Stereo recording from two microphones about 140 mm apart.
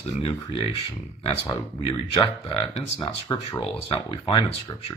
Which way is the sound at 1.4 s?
25° left (ahead or behind).